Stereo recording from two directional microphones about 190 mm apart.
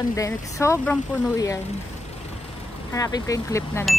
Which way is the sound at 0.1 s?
15° left (ahead or behind).